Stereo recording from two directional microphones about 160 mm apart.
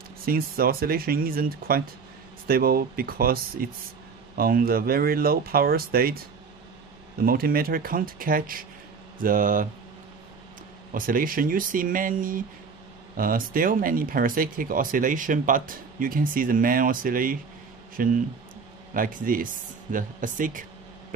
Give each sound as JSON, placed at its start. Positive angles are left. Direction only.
{"t": 0.2, "sound": "speech", "side_deg": -65}
{"t": 7.2, "sound": "speech", "side_deg": -65}
{"t": 10.9, "sound": "speech", "side_deg": -60}